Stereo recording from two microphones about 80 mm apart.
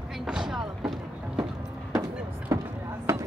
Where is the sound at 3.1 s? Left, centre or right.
Right.